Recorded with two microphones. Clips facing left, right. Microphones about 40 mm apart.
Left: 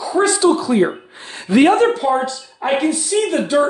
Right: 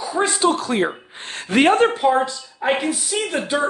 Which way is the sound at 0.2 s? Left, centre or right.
Right.